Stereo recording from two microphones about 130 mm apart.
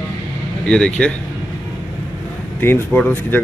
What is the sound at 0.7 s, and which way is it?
Speech, 5° left (ahead or behind).